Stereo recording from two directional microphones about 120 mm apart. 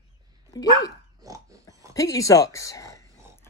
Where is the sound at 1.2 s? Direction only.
30° right (ahead or behind).